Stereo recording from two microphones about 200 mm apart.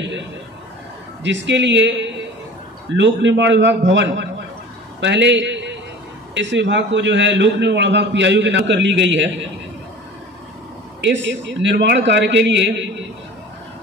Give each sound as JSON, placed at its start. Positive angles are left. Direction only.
{"t": 1.2, "sound": "a man's voice", "side_deg": -65}
{"t": 11.0, "sound": "a man's voice", "side_deg": -65}